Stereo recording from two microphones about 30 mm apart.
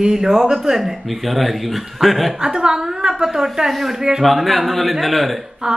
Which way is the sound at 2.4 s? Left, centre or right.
Right.